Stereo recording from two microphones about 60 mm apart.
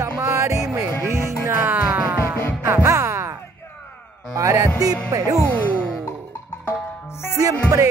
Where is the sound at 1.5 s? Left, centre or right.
Right.